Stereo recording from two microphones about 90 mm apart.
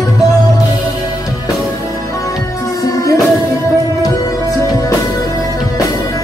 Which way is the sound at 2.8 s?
40° left (ahead or behind).